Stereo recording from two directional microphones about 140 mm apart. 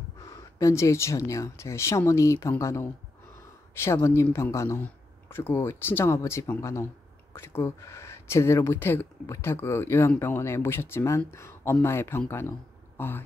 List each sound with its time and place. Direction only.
0.3 s speech: 25° left (ahead or behind)